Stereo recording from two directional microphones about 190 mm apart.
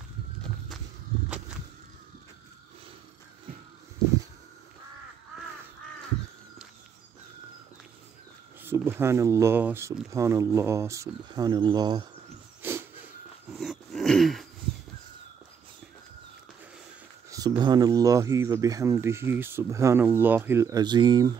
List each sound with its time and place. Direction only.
8.6 s speech: 10° right (ahead or behind)
12.6 s dog: 10° right (ahead or behind)
13.5 s a sound: centre (ahead or behind)
17.3 s speech: 20° right (ahead or behind)